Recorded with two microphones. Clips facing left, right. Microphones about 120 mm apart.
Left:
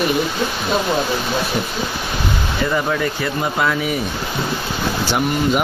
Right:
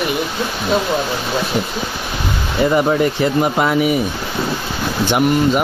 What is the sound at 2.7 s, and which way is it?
Speech, 25° right (ahead or behind).